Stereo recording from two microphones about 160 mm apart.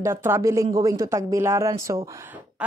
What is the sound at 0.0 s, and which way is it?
Speech, 15° right (ahead or behind).